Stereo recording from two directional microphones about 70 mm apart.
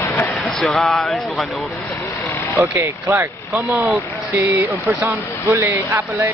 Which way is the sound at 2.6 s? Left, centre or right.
Right.